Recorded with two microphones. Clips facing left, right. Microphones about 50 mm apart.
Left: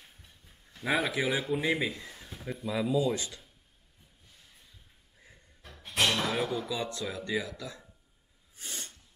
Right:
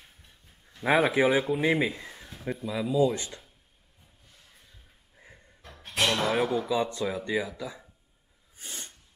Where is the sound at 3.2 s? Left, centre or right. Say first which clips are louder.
Right 1 dB; right.